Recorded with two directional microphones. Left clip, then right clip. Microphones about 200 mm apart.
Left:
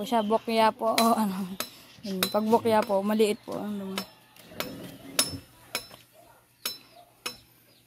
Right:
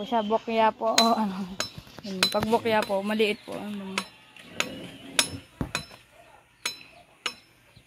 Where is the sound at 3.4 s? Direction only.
5° left (ahead or behind).